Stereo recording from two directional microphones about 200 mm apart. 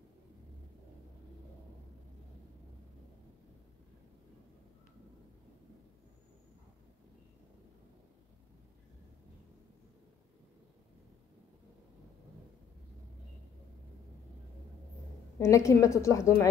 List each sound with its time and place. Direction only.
15.3 s a woman's voice: 15° left (ahead or behind)